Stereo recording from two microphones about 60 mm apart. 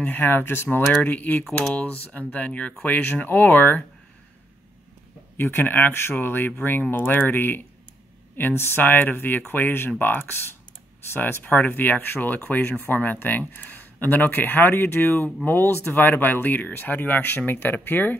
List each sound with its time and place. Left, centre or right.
0.1 s speech: left
5.4 s speech: left